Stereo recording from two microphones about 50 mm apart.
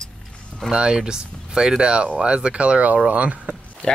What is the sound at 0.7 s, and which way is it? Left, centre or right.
Speech, centre.